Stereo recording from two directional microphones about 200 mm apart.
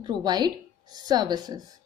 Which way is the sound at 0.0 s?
20° right (ahead or behind).